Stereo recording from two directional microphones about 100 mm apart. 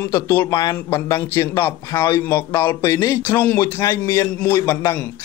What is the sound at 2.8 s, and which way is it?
Speech, 35° left (ahead or behind).